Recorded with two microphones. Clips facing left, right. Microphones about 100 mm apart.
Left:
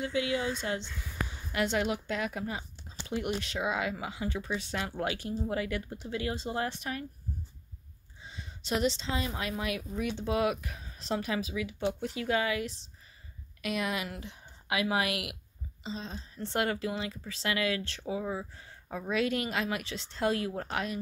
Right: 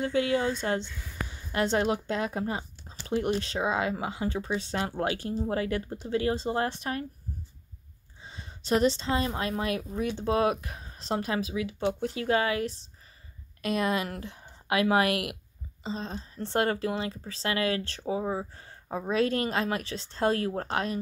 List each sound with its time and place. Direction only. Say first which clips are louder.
0.0 s speech: right 5 dB; 40° right (ahead or behind)
1.5 s speech: right 4 dB; 35° right (ahead or behind)
8.2 s speech: right 1 dB; 40° right (ahead or behind)